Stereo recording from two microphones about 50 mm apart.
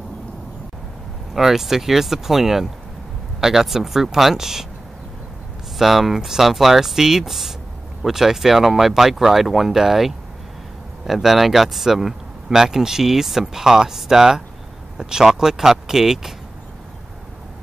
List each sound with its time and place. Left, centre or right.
1.3 s speech: centre
5.8 s speech: centre